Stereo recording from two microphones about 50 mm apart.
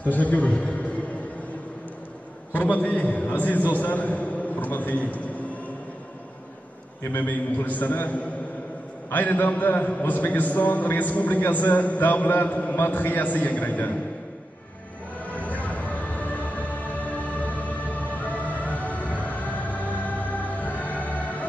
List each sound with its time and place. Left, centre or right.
0.0 s a man's voice: left
2.5 s a man's voice: left
7.1 s a man's voice: left
15.3 s music: left